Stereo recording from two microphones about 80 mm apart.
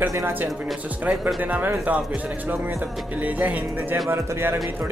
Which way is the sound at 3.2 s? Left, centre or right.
Centre.